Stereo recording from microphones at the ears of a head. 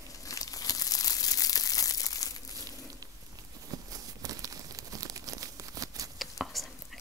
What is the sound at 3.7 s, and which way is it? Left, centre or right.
Crumpling, right.